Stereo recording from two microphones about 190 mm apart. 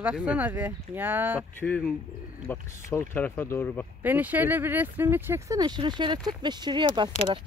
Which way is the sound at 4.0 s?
10° right (ahead or behind).